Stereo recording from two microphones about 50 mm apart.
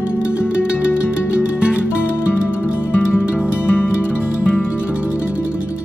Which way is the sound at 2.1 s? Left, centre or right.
Left.